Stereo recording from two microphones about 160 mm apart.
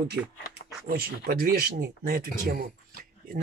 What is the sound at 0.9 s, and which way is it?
Speech, 70° right (ahead or behind).